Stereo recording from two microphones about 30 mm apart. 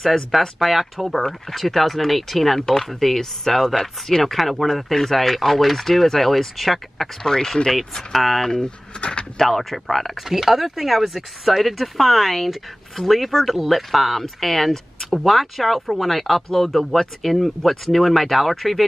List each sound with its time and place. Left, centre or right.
0.3 s speech: centre
2.6 s speech: centre
2.9 s speech: centre
7.2 s speech: left
8.6 s speech: left
9.4 s speech: centre
10.2 s speech: centre
13.6 s speech: centre